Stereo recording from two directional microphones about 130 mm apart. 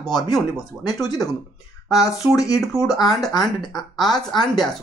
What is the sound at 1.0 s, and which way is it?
Speech, 30° left (ahead or behind).